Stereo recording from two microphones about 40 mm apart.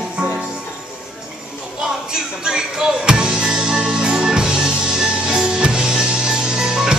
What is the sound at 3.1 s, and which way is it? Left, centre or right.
Music, centre.